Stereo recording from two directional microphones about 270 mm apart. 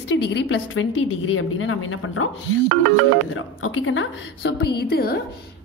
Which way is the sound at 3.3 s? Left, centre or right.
Left.